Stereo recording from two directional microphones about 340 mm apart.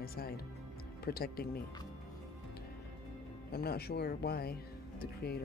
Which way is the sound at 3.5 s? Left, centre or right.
Left.